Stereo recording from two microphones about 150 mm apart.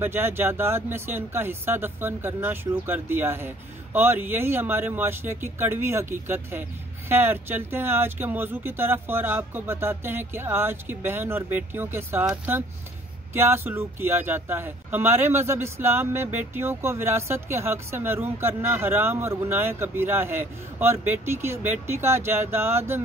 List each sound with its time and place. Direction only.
0.0 s speech: 15° right (ahead or behind)